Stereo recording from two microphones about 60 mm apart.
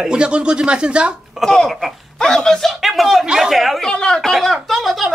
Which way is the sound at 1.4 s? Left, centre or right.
Centre.